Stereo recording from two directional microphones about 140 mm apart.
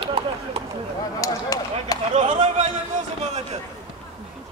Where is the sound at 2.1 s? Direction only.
60° right (ahead or behind).